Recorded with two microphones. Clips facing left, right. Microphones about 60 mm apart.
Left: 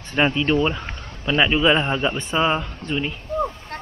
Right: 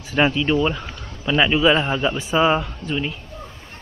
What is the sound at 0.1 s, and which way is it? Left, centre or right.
A man's voice, centre.